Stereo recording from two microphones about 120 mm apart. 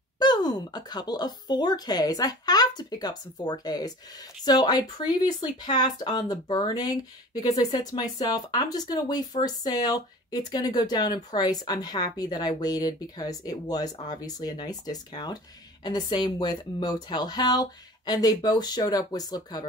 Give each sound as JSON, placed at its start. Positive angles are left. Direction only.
{"t": 0.2, "sound": "speech", "side_deg": 35}